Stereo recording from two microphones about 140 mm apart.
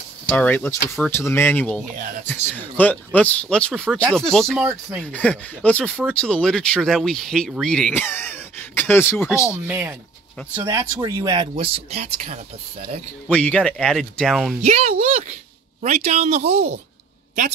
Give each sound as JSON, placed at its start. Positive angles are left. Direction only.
{"t": 0.3, "sound": "speech", "side_deg": 10}
{"t": 4.6, "sound": "speech", "side_deg": -10}
{"t": 5.0, "sound": "speech", "side_deg": 10}
{"t": 9.7, "sound": "speech", "side_deg": -15}
{"t": 11.6, "sound": "speech", "side_deg": -45}
{"t": 13.3, "sound": "speech", "side_deg": 5}
{"t": 14.6, "sound": "speech", "side_deg": -55}